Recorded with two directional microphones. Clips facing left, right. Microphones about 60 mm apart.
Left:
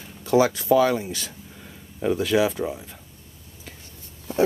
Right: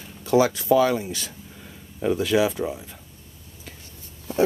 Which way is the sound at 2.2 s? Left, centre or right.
Left.